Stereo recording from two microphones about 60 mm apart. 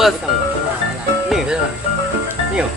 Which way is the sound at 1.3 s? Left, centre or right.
Centre.